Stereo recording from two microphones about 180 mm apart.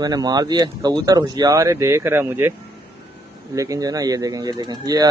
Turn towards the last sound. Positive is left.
turn(degrees=-25)  # may be behind; listen again after turning